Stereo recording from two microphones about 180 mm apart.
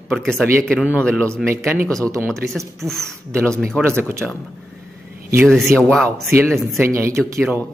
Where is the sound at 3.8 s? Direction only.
15° right (ahead or behind).